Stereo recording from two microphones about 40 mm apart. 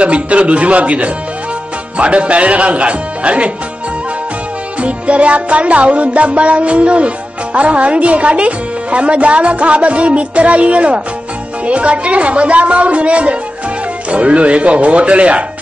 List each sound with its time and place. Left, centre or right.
0.0 s speech: right
4.7 s speech: right